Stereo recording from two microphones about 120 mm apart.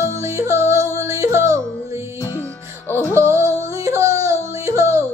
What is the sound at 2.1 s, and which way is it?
Music, 20° left (ahead or behind).